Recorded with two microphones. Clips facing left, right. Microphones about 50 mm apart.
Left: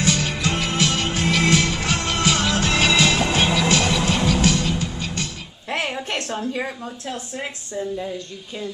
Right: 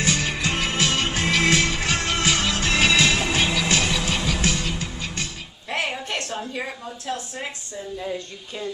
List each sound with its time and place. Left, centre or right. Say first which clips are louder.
0.0 s music: left 2 dB; right
3.3 s music: left 3 dB; left
4.5 s music: left 5 dB; right
5.7 s a sound: left 1 dB; centre